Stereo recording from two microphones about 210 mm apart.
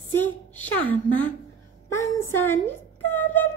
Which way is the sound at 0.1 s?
10° left (ahead or behind).